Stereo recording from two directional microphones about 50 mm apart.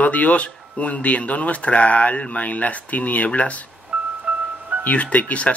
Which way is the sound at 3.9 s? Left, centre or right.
Right.